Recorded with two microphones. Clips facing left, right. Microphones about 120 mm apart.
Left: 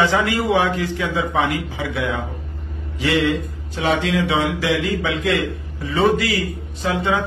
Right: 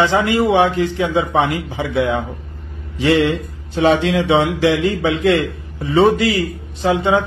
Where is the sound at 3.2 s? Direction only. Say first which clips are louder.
Right 2 dB; 30° right (ahead or behind).